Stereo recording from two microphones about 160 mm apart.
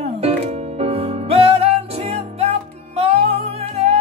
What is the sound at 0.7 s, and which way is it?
Music, 40° right (ahead or behind).